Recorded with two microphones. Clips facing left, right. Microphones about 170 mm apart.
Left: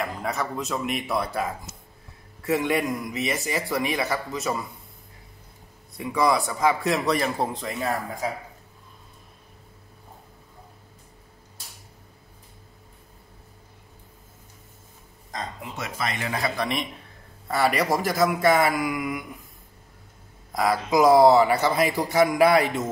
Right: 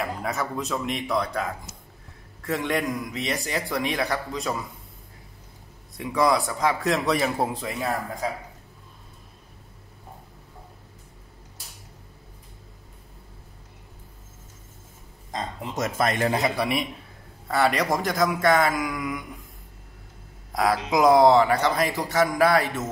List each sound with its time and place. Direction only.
0.0 s a man's voice: centre (ahead or behind)
5.9 s a man's voice: centre (ahead or behind)
15.7 s speech: 45° right (ahead or behind)
16.3 s a man's voice: 20° right (ahead or behind)
17.5 s a man's voice: 5° left (ahead or behind)
20.5 s a man's voice: centre (ahead or behind)